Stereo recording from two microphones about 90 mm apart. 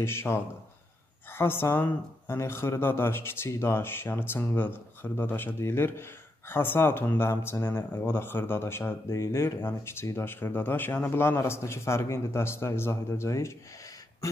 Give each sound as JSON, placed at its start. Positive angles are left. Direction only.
{"t": 0.0, "sound": "speech", "side_deg": 30}
{"t": 14.2, "sound": "throat clearing", "side_deg": 35}